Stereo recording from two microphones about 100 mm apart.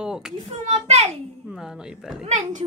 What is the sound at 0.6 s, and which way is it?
Speech, 90° right.